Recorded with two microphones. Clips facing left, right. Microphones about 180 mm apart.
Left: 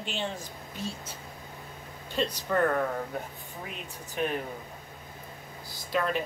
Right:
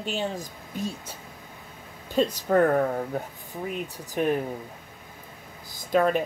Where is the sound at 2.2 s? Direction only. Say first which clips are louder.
Right 6 dB; 40° right (ahead or behind).